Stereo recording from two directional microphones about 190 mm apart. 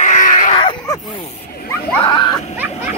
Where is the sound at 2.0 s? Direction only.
25° left (ahead or behind).